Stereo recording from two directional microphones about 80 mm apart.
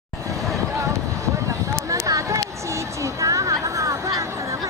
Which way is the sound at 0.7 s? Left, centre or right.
Right.